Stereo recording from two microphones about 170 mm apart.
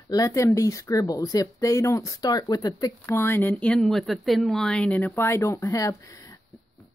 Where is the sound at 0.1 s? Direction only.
20° left (ahead or behind).